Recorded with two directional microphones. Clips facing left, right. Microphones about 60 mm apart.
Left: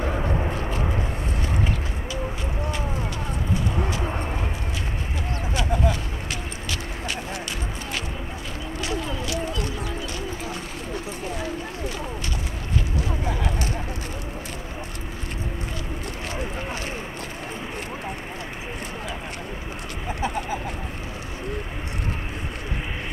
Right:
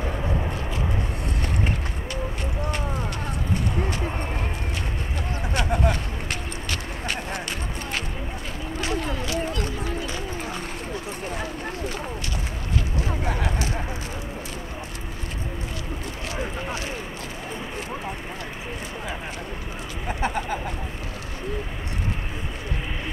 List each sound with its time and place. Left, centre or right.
0.6 s vehicle: left
5.5 s a sound: right
20.2 s chicken: right